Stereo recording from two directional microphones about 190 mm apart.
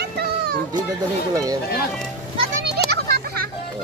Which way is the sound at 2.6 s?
55° right (ahead or behind).